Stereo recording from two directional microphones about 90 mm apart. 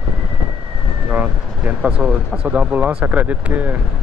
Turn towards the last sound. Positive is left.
turn(degrees=-15)  # may be behind; listen again after turning